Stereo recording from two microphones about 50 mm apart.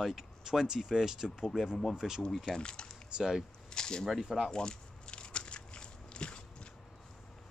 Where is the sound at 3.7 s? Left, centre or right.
Centre.